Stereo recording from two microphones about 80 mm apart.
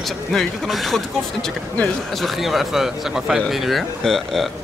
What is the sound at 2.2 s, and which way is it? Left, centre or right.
Speech, centre.